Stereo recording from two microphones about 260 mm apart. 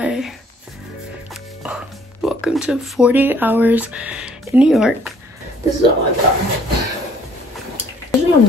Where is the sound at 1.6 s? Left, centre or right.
Centre.